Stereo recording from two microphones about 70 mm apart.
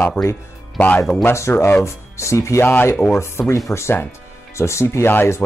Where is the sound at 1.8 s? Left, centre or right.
Left.